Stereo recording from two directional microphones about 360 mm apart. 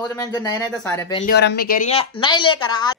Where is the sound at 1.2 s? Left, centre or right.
Left; by 3.0 s centre.